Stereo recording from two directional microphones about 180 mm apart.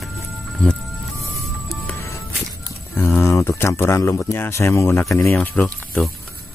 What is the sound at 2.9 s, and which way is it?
Speech, 15° left (ahead or behind).